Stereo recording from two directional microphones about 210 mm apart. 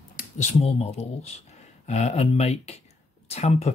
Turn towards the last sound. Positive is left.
turn(degrees=30)  # may be behind; listen again after turning